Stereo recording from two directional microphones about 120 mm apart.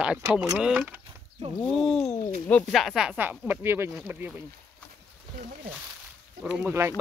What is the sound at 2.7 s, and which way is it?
Speech, centre (ahead or behind).